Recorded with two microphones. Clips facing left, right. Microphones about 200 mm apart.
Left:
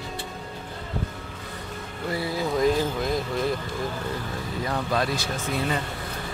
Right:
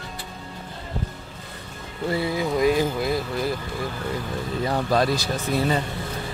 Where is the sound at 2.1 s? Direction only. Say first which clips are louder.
Right 3 dB; 20° right (ahead or behind).